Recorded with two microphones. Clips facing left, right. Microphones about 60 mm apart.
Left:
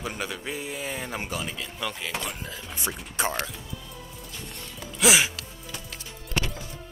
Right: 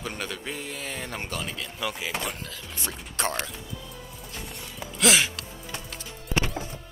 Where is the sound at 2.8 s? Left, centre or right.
Centre.